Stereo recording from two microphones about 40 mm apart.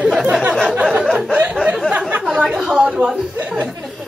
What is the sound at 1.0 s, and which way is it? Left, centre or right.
A woman's voice, centre.